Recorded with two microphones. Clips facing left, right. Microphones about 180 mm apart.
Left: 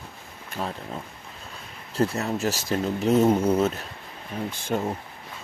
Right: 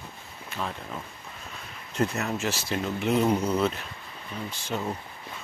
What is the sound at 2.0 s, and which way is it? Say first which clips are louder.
Speech: left 3 dB; 30° left (ahead or behind).